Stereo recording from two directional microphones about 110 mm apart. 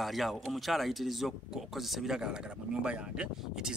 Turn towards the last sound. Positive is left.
turn(degrees=-5)  # may be behind; listen again after turning